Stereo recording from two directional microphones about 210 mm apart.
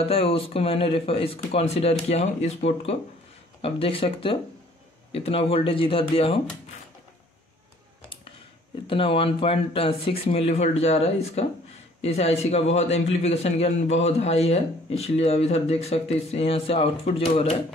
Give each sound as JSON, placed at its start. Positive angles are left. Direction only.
{"t": 0.0, "sound": "a man's voice", "side_deg": 25}
{"t": 8.8, "sound": "a man's voice", "side_deg": 25}